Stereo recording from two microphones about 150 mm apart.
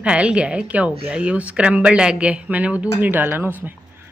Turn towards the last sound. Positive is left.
turn(degrees=-10)  # may be behind; listen again after turning